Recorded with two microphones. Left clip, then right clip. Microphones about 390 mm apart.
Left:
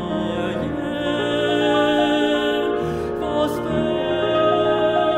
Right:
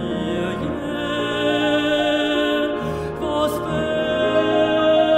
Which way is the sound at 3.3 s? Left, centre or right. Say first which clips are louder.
Right 1 dB; centre.